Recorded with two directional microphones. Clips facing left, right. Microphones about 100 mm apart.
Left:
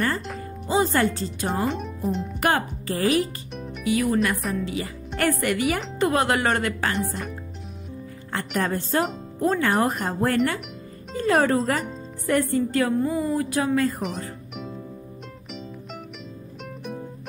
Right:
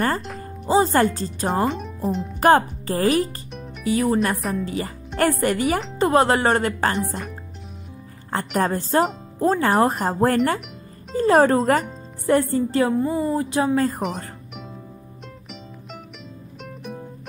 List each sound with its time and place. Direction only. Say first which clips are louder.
0.4 s music: right 4 dB; 35° right (ahead or behind)
1.1 s speech: right 2 dB; 40° right (ahead or behind)
1.7 s speech: right 2 dB; centre (ahead or behind)
2.4 s speech: right 8 dB; 35° right (ahead or behind)
8.3 s speech: right 4 dB; 35° right (ahead or behind)
13.7 s speech: right 2 dB; 40° right (ahead or behind)
16.6 s music: even; centre (ahead or behind)